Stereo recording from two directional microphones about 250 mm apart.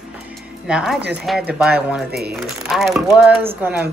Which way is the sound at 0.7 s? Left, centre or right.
Centre.